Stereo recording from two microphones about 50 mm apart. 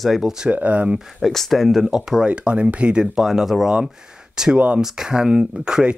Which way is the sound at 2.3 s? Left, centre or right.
Right.